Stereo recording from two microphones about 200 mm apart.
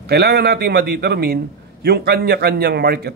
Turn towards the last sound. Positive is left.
turn(degrees=-55)  # may be behind; listen again after turning